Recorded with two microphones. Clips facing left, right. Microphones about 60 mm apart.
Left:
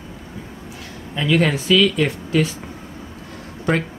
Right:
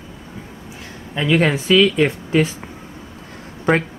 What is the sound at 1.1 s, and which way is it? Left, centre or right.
Speech, right.